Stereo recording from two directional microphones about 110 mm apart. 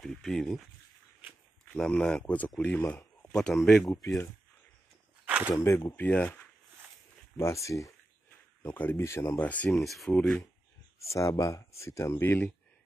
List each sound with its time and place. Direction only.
0.0 s speech: centre (ahead or behind)
1.7 s speech: 5° left (ahead or behind)
5.2 s a sound: 15° right (ahead or behind)
5.5 s speech: 30° left (ahead or behind)
6.0 s speech: 10° left (ahead or behind)
7.3 s speech: 25° left (ahead or behind)
8.6 s speech: 20° left (ahead or behind)
9.7 s speech: centre (ahead or behind)
11.1 s speech: 30° left (ahead or behind)